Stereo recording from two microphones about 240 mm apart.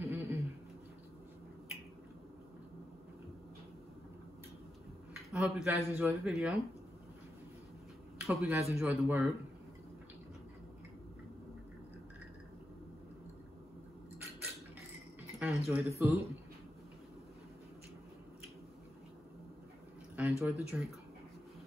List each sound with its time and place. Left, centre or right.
0.0 s a sound: centre
5.3 s speech: centre
8.2 s a man's voice: centre
15.3 s speech: centre
20.2 s speech: centre